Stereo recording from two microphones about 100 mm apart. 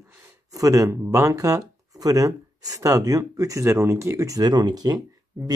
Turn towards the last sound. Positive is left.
turn(degrees=-40)  # may be behind; listen again after turning